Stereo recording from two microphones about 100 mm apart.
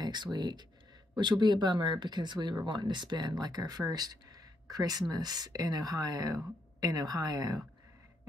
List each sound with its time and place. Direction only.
0.0 s speech: 45° right (ahead or behind)